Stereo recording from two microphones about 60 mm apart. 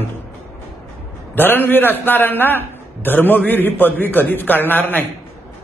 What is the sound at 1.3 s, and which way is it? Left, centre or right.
A man's voice, left.